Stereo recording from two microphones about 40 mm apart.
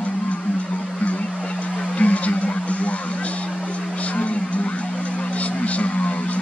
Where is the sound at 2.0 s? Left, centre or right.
Left.